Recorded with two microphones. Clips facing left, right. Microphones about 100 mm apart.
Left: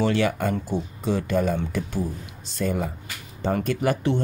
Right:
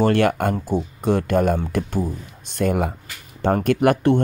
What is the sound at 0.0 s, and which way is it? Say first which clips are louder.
Speech: right 5 dB; 55° right (ahead or behind).